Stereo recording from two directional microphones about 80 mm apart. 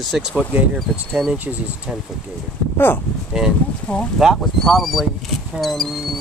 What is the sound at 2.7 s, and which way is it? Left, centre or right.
Speech, left.